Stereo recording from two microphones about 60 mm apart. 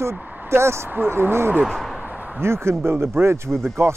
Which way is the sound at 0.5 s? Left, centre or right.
Right.